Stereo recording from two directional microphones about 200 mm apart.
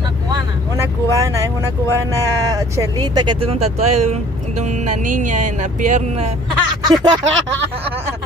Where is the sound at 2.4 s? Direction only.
20° right (ahead or behind); by 6.3 s 35° right (ahead or behind).